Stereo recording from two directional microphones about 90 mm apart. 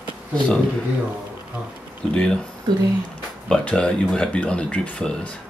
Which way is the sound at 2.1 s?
10° left (ahead or behind).